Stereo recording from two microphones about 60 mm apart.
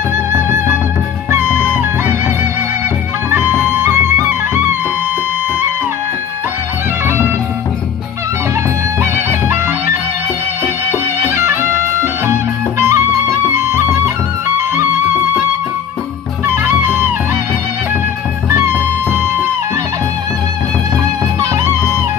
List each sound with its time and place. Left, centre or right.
0.3 s music: right
9.0 s music: right
16.4 s music: right
18.5 s music: right